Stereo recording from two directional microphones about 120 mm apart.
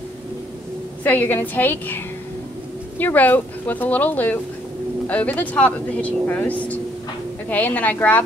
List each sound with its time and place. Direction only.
1.0 s speech: 15° left (ahead or behind)
3.0 s speech: 15° left (ahead or behind)